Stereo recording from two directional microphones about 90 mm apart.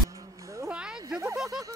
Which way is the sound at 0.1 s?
35° right (ahead or behind).